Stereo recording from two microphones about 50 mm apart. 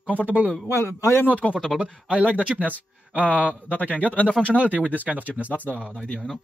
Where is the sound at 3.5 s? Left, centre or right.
Left.